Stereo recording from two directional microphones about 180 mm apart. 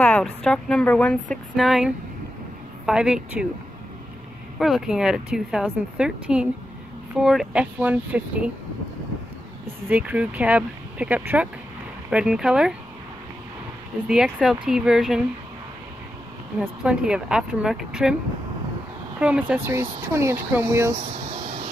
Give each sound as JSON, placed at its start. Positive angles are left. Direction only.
{"t": 0.0, "sound": "speech", "side_deg": 5}
{"t": 4.6, "sound": "speech", "side_deg": 0}
{"t": 9.8, "sound": "speech", "side_deg": -10}
{"t": 14.0, "sound": "speech", "side_deg": -5}
{"t": 16.6, "sound": "speech", "side_deg": -5}
{"t": 19.1, "sound": "speech", "side_deg": -10}
{"t": 21.0, "sound": "a sound", "side_deg": -35}